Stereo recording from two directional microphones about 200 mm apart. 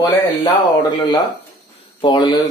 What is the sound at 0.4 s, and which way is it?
Speech, 20° left (ahead or behind).